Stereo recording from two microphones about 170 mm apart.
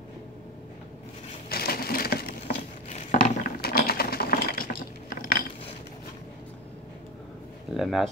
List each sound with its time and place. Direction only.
1.5 s crushing: 65° left (ahead or behind)
2.9 s a sound: 40° left (ahead or behind)
3.2 s sewing machine: 60° left (ahead or behind)
7.7 s speech: centre (ahead or behind)